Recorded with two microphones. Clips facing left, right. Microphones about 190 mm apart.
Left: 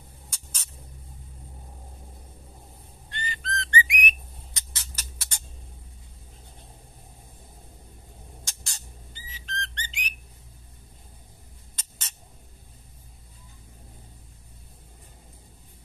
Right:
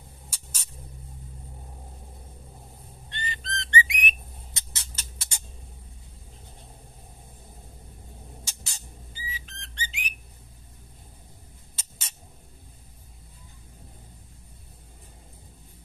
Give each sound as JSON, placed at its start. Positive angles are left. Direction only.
{"t": 0.3, "sound": "a sound", "side_deg": -5}
{"t": 3.1, "sound": "whistling", "side_deg": -20}
{"t": 8.5, "sound": "whistle", "side_deg": -5}